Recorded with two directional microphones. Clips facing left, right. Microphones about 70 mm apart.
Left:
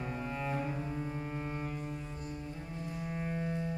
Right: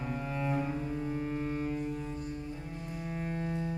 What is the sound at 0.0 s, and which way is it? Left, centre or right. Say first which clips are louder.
Cello: right 2 dB; centre.